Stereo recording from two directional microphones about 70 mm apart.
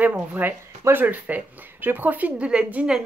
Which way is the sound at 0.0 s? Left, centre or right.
Right.